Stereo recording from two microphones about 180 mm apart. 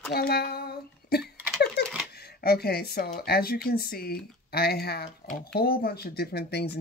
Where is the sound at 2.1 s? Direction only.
60° left (ahead or behind).